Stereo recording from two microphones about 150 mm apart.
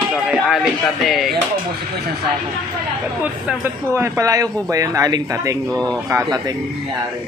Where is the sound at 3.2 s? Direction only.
15° right (ahead or behind).